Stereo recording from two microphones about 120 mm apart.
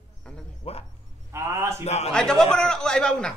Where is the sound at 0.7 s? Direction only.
55° left (ahead or behind).